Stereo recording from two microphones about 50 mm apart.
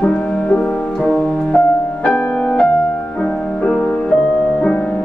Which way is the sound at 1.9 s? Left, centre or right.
Left.